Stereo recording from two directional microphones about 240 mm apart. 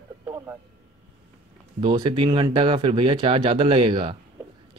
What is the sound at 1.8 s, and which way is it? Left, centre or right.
Speech, centre.